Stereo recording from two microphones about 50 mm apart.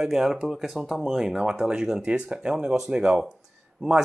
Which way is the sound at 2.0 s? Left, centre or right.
Right.